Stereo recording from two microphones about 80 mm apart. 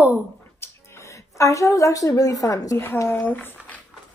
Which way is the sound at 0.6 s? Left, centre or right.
Left.